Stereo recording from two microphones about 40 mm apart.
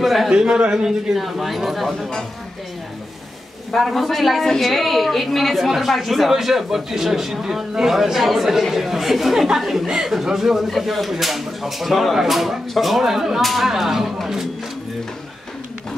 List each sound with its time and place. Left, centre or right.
0.0 s a man's voice: centre
0.3 s speech: centre
0.8 s a woman's voice: centre
3.7 s a woman's voice: centre
13.4 s a woman's voice: centre